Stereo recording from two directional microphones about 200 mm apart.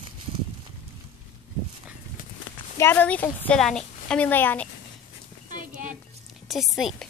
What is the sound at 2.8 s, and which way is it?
A woman's voice, 10° left (ahead or behind).